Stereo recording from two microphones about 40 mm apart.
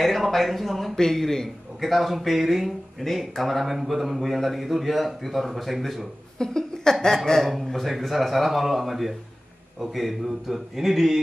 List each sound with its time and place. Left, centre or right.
0.0 s a man's voice: centre
6.3 s a sound: centre
7.2 s speech: centre